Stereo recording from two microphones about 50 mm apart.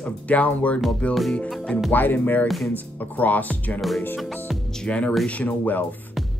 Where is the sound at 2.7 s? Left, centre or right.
Left.